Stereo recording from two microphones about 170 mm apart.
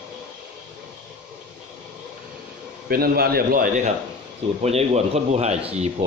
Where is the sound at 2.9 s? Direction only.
65° right (ahead or behind).